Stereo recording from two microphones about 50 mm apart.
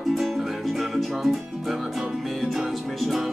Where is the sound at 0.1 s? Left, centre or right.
Centre.